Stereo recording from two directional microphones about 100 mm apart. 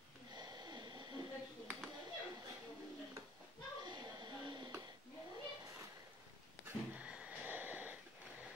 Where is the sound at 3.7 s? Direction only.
45° right (ahead or behind).